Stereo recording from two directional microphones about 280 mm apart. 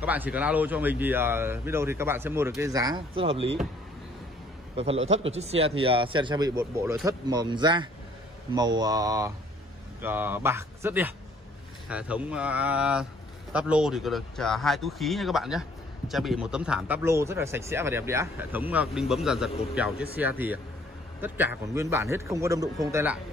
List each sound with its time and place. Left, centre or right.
0.0 s speech: centre
4.9 s a man's voice: right
5.2 s speech: right